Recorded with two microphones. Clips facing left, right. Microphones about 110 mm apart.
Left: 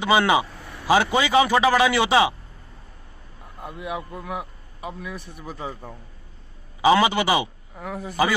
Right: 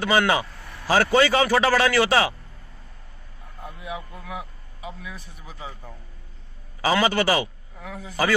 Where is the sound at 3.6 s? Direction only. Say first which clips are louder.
Left 4 dB; 60° left (ahead or behind).